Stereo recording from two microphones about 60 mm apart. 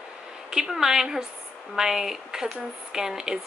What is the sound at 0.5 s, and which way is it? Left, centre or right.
A woman's voice, centre.